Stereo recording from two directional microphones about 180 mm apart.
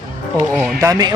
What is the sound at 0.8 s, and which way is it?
Speech, 20° right (ahead or behind).